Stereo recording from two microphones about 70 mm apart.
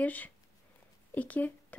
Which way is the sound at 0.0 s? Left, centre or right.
Left.